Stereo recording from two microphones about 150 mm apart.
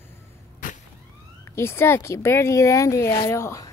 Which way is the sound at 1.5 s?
15° left (ahead or behind).